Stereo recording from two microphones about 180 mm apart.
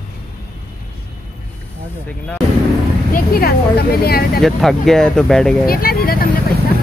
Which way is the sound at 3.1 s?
55° left (ahead or behind).